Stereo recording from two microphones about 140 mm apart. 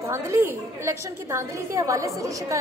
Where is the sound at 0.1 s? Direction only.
15° right (ahead or behind).